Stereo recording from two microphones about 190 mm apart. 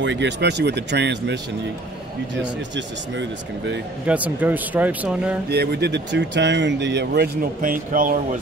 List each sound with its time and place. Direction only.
0.0 s speech: 70° right (ahead or behind)
4.1 s speech: 10° right (ahead or behind)
5.5 s speech: 60° right (ahead or behind)
7.6 s speech: 45° right (ahead or behind)